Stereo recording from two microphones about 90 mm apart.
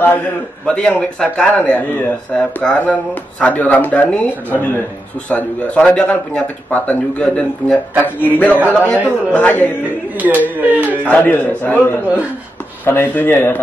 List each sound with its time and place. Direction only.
0.7 s speech: 15° left (ahead or behind)
5.3 s a man's voice: 15° left (ahead or behind)
10.1 s speech: 20° right (ahead or behind)
11.1 s a man's voice: 20° left (ahead or behind)